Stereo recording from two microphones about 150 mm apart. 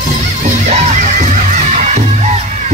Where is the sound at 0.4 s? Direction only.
50° right (ahead or behind).